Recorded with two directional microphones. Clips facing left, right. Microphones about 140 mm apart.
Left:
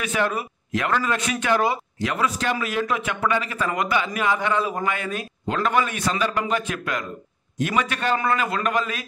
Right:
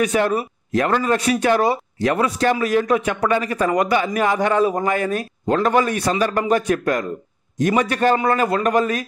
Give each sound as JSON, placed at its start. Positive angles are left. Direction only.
{"t": 0.0, "sound": "speech", "side_deg": -35}